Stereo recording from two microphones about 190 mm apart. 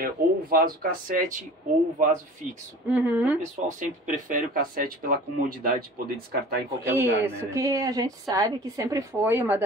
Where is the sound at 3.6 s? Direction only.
40° right (ahead or behind).